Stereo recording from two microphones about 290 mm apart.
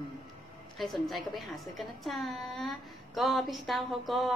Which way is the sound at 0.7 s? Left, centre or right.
Centre.